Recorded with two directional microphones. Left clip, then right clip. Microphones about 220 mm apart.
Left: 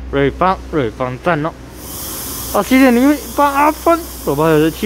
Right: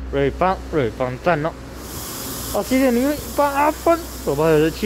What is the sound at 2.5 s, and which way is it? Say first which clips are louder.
Speech: left 7 dB; 15° left (ahead or behind).